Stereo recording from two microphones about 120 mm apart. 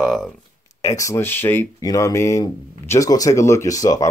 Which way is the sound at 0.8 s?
25° left (ahead or behind).